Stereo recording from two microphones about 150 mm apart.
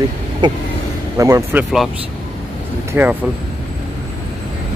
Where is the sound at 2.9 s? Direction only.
10° right (ahead or behind).